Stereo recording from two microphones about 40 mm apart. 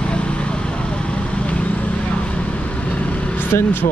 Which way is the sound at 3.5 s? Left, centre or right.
Left.